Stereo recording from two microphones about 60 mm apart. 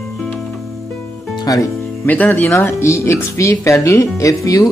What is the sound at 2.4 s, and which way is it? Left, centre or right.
Speech, left.